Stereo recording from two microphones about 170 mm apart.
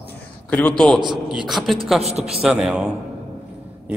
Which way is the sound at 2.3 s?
5° right (ahead or behind).